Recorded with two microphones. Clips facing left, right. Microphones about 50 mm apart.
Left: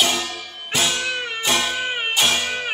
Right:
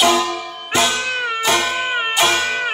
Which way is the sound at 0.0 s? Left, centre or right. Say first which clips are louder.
Right 7 dB; right.